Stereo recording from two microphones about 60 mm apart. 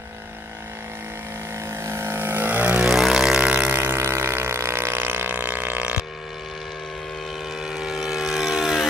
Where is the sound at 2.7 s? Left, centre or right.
Centre.